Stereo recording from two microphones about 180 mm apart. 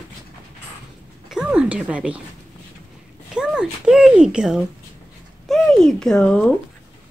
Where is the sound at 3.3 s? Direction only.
5° right (ahead or behind).